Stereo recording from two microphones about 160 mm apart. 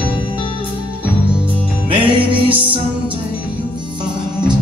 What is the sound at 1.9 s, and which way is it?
Music, 35° right (ahead or behind).